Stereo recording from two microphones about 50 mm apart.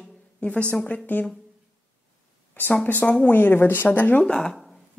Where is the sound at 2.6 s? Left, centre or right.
Left.